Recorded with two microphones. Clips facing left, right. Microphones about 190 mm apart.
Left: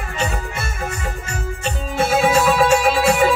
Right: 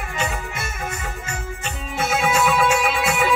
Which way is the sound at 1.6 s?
35° left (ahead or behind).